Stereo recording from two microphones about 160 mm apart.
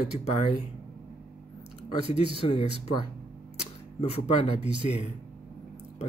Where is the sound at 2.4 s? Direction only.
40° left (ahead or behind).